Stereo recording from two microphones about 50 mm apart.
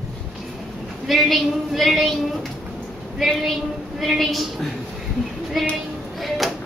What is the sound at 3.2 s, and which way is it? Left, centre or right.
A woman's voice, centre.